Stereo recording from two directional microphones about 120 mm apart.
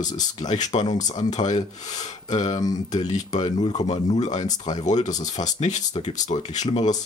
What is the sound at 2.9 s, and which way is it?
Speech, 80° left.